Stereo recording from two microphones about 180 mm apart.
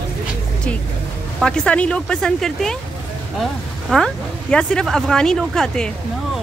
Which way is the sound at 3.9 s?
5° left (ahead or behind).